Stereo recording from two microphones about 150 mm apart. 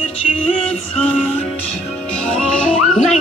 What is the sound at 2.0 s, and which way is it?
Music, 5° left (ahead or behind).